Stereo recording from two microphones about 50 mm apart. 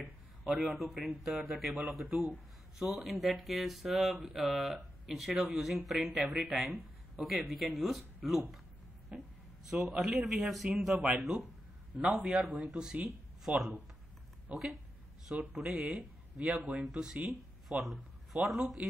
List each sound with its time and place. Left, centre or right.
0.5 s speech: centre
9.7 s speech: centre
12.4 s speech: centre
14.5 s a woman's voice: right
15.6 s speech: centre
17.3 s speech: centre